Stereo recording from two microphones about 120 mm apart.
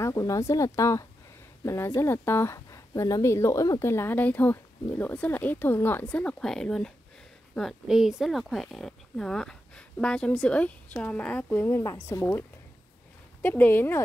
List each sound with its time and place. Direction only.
0.0 s speech: 30° left (ahead or behind)
3.9 s speech: 15° left (ahead or behind)